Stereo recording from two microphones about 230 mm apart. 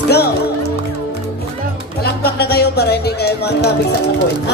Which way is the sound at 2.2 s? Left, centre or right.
Left.